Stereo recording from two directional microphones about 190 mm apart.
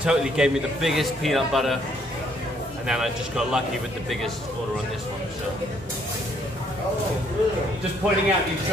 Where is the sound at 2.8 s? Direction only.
5° right (ahead or behind).